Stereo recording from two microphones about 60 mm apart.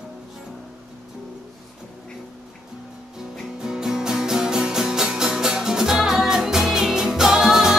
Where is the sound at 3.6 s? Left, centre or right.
Centre.